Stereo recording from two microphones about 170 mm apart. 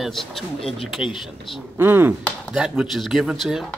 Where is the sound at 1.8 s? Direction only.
10° right (ahead or behind).